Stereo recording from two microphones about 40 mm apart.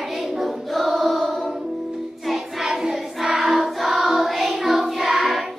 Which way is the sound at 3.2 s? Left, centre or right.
Centre.